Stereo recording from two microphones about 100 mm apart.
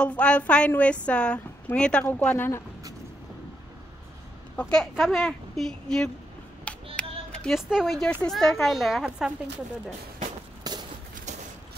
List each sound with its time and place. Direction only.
0.0 s a woman's voice: 10° left (ahead or behind)
4.6 s speech: 10° left (ahead or behind)
6.7 s a sound: 10° left (ahead or behind)
7.5 s speech: centre (ahead or behind)
10.6 s walk: 45° right (ahead or behind)